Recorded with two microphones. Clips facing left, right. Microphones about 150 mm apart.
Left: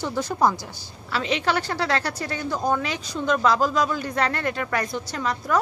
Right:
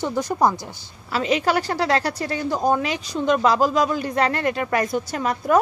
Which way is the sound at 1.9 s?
5° right (ahead or behind).